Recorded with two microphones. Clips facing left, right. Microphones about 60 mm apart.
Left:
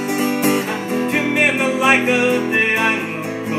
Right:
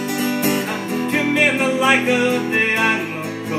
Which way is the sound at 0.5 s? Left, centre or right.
Centre.